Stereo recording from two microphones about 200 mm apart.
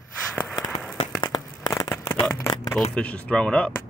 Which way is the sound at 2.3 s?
20° left (ahead or behind).